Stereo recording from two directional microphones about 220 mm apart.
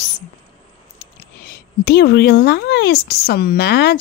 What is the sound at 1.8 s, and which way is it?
Speech, 45° left (ahead or behind).